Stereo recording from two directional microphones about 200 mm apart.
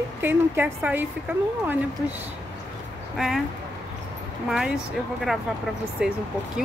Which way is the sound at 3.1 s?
Centre (ahead or behind).